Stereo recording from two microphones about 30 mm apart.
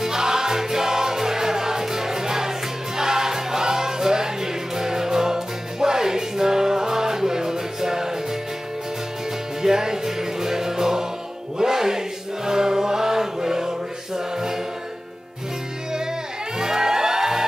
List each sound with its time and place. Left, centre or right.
0.0 s music: centre
9.6 s music: centre
16.5 s music: centre